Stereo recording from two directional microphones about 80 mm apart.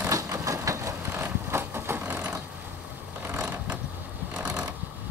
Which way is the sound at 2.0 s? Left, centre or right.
Right.